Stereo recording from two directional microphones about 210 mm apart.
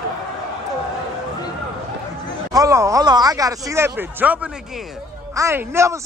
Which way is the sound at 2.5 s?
15° right (ahead or behind).